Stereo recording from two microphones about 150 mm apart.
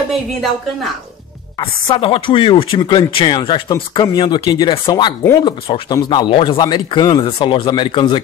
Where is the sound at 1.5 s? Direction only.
35° left (ahead or behind).